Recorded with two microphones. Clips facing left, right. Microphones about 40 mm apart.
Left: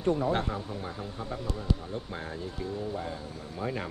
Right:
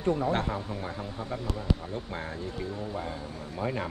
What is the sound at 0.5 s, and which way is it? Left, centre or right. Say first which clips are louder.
Speech: right 2 dB; centre.